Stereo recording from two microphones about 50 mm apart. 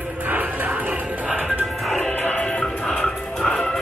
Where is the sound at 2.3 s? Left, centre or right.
Left.